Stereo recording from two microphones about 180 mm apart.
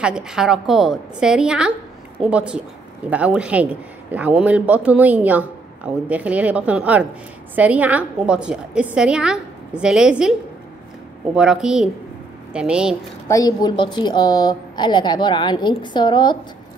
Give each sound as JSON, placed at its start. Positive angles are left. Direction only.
{"t": 0.0, "sound": "a woman's voice", "side_deg": -5}
{"t": 11.3, "sound": "a woman's voice", "side_deg": -5}
{"t": 13.3, "sound": "a woman's voice", "side_deg": 20}